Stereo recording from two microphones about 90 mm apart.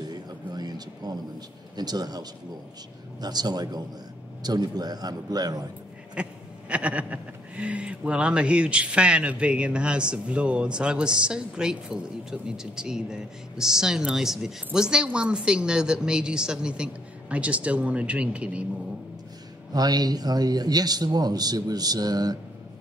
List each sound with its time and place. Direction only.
0.0 s a sound: 50° right (ahead or behind)
1.8 s a man's voice: 50° right (ahead or behind)
6.2 s speech: 15° right (ahead or behind)
19.7 s a man's voice: 45° right (ahead or behind)